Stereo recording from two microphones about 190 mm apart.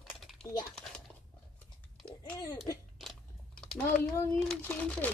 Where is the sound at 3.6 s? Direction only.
Centre (ahead or behind).